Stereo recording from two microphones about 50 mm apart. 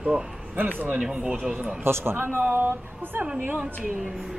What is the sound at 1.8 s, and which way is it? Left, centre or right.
Speech, right.